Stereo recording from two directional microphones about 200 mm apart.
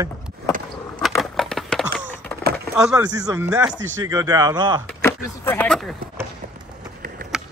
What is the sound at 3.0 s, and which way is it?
Speech, 20° right (ahead or behind).